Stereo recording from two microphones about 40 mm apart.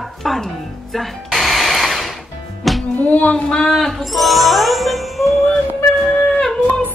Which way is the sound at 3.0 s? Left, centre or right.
Left.